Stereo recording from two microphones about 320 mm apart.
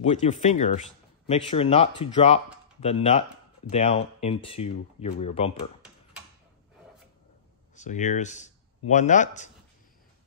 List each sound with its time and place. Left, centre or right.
0.0 s speech: left
7.7 s speech: left